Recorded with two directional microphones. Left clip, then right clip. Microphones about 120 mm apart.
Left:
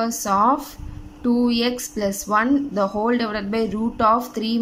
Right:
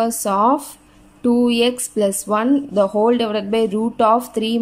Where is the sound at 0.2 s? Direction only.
25° right (ahead or behind).